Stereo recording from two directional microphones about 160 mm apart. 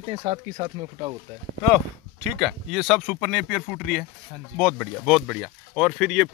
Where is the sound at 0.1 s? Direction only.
40° right (ahead or behind).